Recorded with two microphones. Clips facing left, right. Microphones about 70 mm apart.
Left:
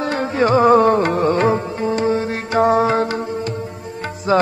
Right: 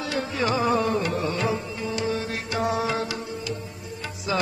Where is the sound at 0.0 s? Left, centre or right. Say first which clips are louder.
Left 8 dB; left.